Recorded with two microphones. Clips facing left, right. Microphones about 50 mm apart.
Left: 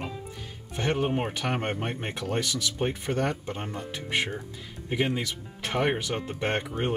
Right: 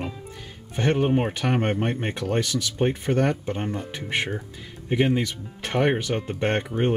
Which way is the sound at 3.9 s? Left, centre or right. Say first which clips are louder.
Left 1 dB; right.